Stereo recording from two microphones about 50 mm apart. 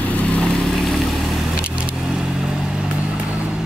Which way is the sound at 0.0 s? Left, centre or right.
Left.